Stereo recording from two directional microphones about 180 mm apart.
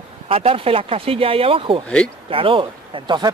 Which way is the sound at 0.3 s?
30° right (ahead or behind).